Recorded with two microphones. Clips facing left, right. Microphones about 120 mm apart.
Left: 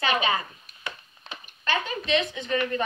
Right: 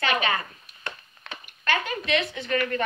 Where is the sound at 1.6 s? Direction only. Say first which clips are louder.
Right 1 dB; 25° left (ahead or behind).